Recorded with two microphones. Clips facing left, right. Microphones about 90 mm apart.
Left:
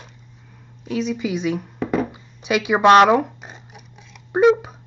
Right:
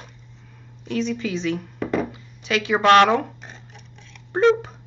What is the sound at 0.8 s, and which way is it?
Speech, 10° left (ahead or behind).